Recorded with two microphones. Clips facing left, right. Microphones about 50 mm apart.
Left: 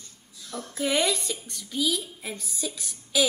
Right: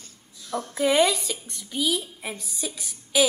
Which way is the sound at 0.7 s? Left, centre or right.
Right.